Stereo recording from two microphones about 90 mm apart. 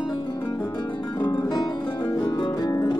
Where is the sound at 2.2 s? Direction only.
60° left (ahead or behind).